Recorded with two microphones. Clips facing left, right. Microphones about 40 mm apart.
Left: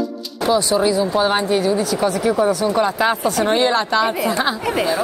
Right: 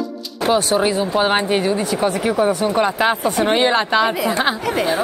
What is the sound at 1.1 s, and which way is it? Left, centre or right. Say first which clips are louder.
Speech: even; right.